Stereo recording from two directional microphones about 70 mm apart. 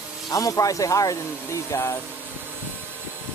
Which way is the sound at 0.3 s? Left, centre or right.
Left.